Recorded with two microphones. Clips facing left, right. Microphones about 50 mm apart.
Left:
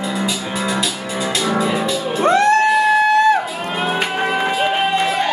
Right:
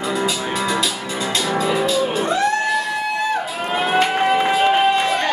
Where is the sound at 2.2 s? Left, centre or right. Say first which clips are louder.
Left 6 dB; left.